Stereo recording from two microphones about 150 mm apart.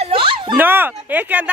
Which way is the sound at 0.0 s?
35° right (ahead or behind).